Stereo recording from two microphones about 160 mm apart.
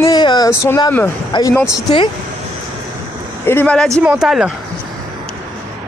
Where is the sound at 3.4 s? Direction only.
10° left (ahead or behind).